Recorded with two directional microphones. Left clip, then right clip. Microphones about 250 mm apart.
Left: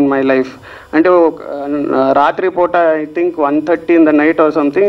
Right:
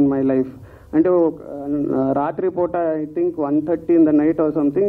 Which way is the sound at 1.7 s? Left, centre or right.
Centre.